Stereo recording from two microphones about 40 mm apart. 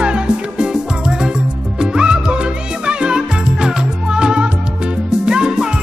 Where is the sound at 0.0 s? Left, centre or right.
Right.